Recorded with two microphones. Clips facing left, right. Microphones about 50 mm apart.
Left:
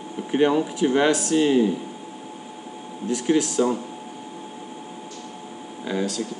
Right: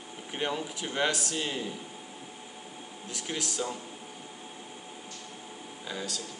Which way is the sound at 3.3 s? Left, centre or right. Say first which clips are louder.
Left 11 dB; centre.